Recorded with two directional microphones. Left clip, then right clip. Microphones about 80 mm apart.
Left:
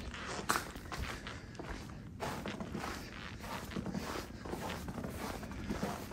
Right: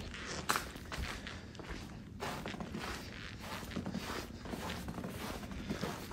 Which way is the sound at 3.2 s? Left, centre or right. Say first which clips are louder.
Left 1 dB; left.